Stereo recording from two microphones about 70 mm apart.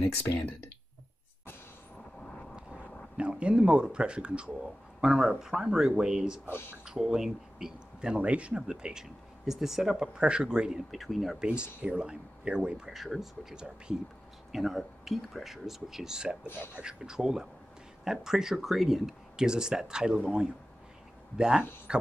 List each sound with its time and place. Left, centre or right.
2.5 s speech: centre
6.4 s speech: left
6.8 s speech: centre
10.9 s speech: centre
11.8 s speech: centre
16.4 s speech: left
16.7 s speech: centre